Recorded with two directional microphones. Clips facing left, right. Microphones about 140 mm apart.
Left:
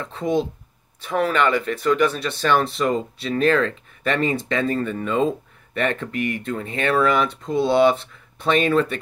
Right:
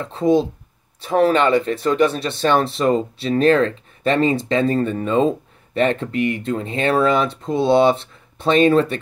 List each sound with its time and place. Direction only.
0.0 s speech: 30° right (ahead or behind)